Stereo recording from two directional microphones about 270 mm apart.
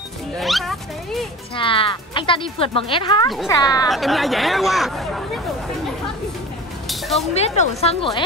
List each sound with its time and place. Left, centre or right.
0.4 s cat: centre
1.5 s speech: centre
3.9 s speech: centre
6.9 s a sound: centre
7.3 s speech: left